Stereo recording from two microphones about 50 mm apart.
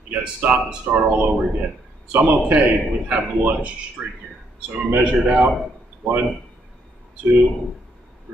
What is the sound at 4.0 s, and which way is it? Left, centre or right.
Speech, centre.